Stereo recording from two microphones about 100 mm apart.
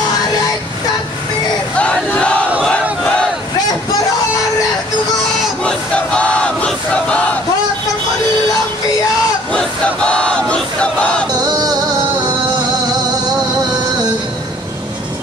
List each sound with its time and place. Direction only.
1.8 s battle cry: 10° left (ahead or behind)
5.6 s battle cry: 10° left (ahead or behind)
9.5 s battle cry: 10° left (ahead or behind)
11.3 s music: 45° right (ahead or behind)